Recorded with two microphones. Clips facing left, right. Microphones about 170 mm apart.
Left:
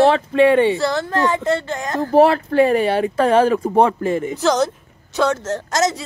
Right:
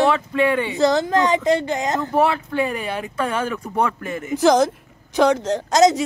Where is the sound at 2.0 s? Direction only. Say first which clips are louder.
Left 10 dB; 35° left (ahead or behind).